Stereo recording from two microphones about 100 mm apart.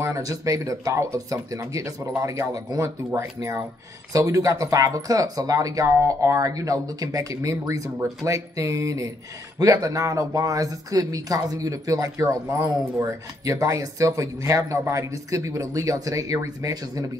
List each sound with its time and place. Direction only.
0.0 s speech: 35° right (ahead or behind)